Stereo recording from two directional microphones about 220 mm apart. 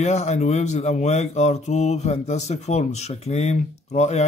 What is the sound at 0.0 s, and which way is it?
A man's voice, 30° left (ahead or behind).